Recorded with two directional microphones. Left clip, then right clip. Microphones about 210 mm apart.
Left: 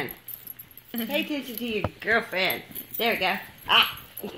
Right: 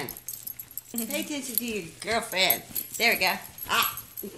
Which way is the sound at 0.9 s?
10° left (ahead or behind).